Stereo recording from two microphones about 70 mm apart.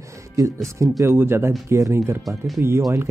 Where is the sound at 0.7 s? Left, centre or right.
Right.